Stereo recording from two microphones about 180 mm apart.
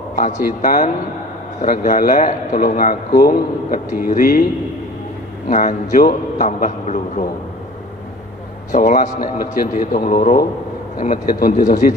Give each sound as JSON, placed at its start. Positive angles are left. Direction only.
{"t": 0.2, "sound": "a man's voice", "side_deg": 50}
{"t": 5.5, "sound": "a man's voice", "side_deg": 45}
{"t": 8.7, "sound": "a man's voice", "side_deg": 45}